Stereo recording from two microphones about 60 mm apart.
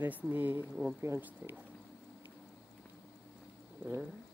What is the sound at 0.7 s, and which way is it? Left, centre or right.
Speech, centre.